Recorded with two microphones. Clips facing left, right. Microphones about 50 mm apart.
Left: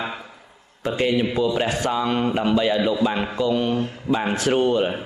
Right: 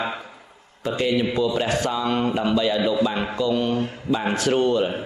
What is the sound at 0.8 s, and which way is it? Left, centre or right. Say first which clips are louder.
Speech: left 1 dB; left.